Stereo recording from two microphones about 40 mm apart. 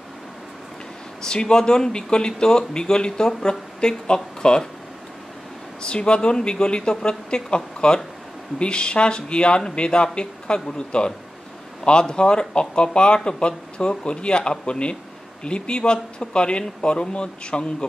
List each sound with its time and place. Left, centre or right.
1.2 s speech: centre
5.8 s speech: left